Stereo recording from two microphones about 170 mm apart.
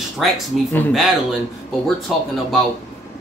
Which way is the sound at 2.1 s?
Centre (ahead or behind).